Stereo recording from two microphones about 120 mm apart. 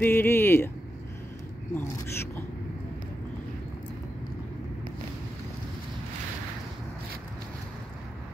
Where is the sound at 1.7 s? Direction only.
20° left (ahead or behind).